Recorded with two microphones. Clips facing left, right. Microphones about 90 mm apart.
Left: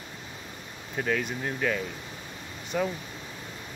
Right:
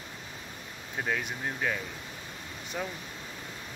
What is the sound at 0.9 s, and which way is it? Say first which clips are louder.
Speech: left 4 dB; 10° right (ahead or behind).